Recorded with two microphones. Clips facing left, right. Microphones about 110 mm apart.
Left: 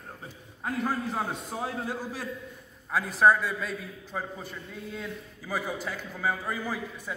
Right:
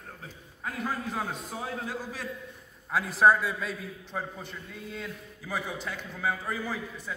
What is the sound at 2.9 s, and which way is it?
A man's voice, centre (ahead or behind).